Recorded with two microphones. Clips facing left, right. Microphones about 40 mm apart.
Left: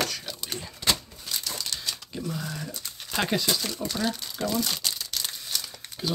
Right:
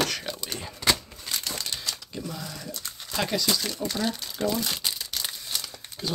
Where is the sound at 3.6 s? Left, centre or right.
Centre.